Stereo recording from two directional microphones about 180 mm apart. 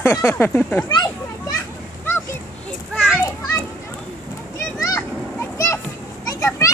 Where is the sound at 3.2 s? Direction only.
15° left (ahead or behind).